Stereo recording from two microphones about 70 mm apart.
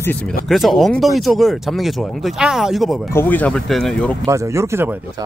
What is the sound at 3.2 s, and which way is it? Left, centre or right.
Speech, left.